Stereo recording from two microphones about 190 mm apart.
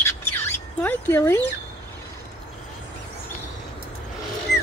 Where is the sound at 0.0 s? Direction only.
15° left (ahead or behind).